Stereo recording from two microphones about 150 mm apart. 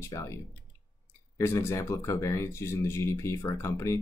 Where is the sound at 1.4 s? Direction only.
15° left (ahead or behind).